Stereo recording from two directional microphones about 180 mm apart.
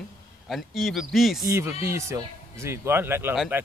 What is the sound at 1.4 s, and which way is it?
Speech, 15° right (ahead or behind).